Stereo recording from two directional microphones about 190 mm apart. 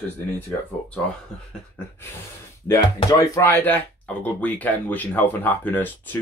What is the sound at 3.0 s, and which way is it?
Speech, 20° left (ahead or behind).